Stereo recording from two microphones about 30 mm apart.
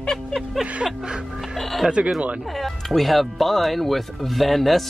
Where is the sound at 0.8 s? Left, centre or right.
Right.